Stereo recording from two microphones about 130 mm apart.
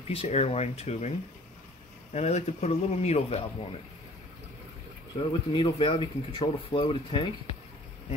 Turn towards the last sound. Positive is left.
turn(degrees=45)  # may be behind; listen again after turning